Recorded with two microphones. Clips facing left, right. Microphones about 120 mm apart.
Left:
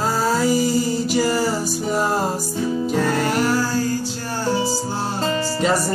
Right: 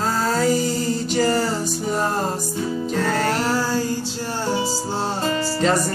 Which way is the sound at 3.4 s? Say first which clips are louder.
Left 1 dB; 25° right (ahead or behind).